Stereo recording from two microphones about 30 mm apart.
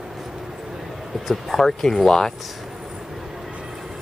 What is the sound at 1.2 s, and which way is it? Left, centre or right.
Speech, centre.